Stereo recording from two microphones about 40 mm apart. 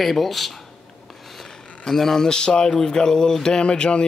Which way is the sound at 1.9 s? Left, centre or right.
Centre.